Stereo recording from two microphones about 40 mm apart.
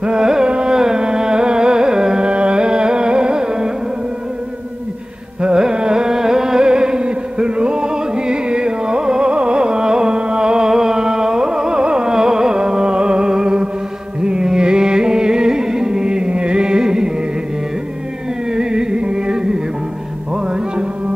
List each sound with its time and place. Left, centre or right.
0.0 s carnatic music: centre
5.4 s carnatic music: centre
14.2 s music: right
18.5 s music: centre